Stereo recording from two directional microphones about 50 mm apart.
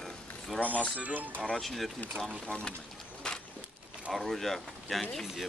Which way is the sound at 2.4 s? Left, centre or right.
Centre.